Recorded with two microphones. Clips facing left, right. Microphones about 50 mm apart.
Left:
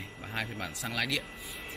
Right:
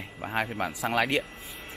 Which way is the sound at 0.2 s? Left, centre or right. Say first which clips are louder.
Right 8 dB; right.